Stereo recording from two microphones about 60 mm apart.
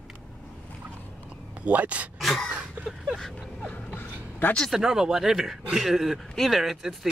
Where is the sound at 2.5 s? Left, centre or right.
Right.